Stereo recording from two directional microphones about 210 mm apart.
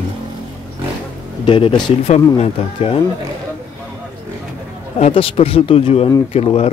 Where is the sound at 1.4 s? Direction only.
20° left (ahead or behind).